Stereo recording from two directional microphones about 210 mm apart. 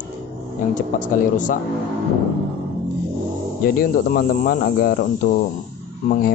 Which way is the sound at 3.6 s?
45° left (ahead or behind).